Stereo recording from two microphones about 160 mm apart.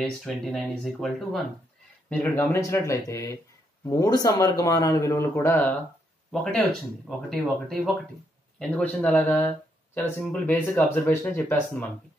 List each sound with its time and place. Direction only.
0.0 s speech: 5° left (ahead or behind)
2.0 s a man's voice: 10° left (ahead or behind)